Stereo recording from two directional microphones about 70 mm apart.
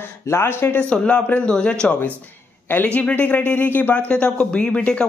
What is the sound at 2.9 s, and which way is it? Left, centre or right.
Speech, left.